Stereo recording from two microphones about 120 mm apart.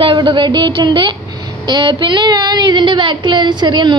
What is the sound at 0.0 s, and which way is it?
A woman's voice, 45° right (ahead or behind).